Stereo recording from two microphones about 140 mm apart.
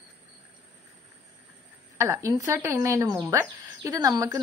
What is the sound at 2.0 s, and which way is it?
Speech, 20° right (ahead or behind).